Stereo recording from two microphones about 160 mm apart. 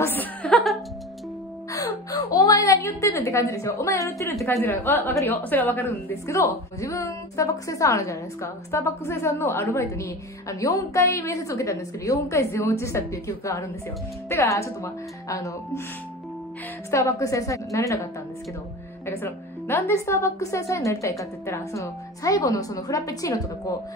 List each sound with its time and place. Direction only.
0.0 s chuckle: 10° left (ahead or behind)
1.7 s whimper: 20° left (ahead or behind)
4.5 s a woman's voice: 15° left (ahead or behind)
16.9 s a woman's voice: 20° left (ahead or behind)
19.0 s a woman's voice: 15° left (ahead or behind)